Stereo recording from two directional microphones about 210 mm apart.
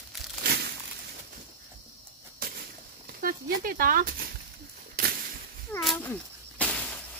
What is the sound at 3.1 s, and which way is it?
Speech, 45° right (ahead or behind).